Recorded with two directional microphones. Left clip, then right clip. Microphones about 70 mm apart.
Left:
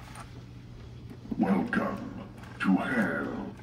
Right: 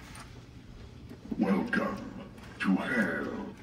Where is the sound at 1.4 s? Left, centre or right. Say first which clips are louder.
Left 1 dB; left.